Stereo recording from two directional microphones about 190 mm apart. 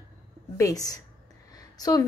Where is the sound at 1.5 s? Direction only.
20° left (ahead or behind).